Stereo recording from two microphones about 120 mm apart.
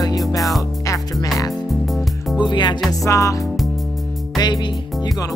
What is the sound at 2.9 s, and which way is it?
Music, 25° left (ahead or behind).